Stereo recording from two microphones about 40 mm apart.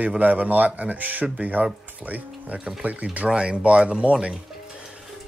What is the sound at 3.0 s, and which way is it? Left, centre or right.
Speech, right.